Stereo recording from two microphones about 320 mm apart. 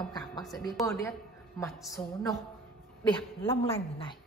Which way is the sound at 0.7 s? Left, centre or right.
Centre.